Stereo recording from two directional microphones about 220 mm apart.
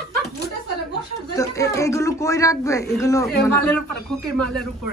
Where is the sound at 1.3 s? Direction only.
15° left (ahead or behind).